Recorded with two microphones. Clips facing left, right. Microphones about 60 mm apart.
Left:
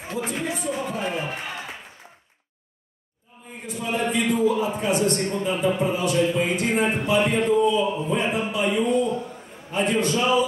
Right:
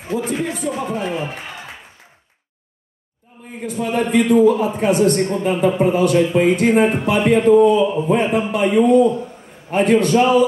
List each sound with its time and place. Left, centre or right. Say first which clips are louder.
0.3 s speech: right 5 dB; right
1.0 s speech: right 3 dB; centre
3.6 s speech: right 6 dB; right